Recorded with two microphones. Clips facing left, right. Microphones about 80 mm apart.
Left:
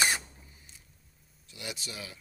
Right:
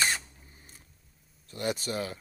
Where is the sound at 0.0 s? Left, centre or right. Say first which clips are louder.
Left 1 dB; centre.